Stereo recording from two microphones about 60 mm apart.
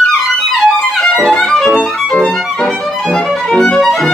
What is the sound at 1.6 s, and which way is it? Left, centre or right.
Violin, centre.